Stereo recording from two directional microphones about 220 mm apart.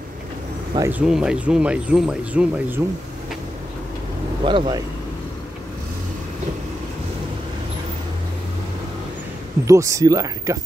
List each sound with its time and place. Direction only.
0.7 s speech: 10° right (ahead or behind)
4.5 s speech: 20° right (ahead or behind)
9.7 s speech: 15° right (ahead or behind)